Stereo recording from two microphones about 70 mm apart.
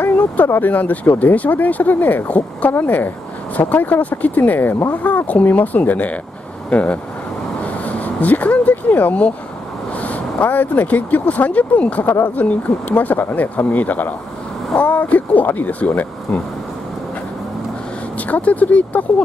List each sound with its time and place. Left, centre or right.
0.0 s speech: left
7.6 s a sound: left
9.9 s speech: left
18.1 s speech: left